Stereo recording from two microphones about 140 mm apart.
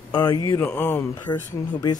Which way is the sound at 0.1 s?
30° left (ahead or behind).